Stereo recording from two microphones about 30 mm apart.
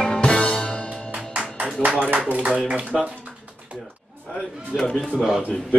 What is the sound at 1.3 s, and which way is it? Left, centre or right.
Music, right.